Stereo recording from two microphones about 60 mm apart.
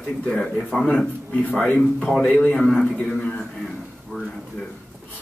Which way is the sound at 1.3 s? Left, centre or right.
Left.